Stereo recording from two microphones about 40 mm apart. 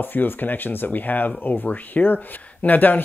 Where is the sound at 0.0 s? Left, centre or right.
Left.